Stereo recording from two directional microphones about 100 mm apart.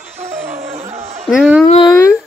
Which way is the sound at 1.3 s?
5° right (ahead or behind).